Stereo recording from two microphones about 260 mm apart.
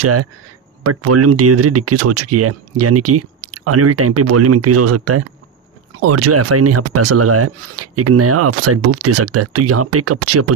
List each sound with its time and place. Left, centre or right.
0.0 s speech: right